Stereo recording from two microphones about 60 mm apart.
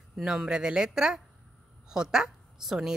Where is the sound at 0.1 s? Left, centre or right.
Centre.